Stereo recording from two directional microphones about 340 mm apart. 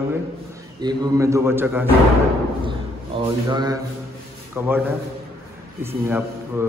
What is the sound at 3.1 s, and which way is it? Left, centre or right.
A man's voice, centre.